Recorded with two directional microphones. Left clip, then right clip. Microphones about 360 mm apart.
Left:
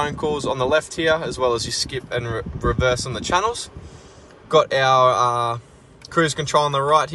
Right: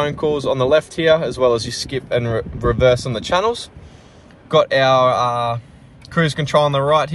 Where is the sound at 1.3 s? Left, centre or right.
Centre.